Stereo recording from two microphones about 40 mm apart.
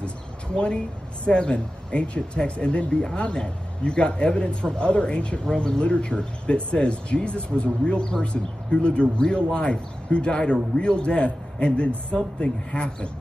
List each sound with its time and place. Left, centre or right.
1.2 s speech: left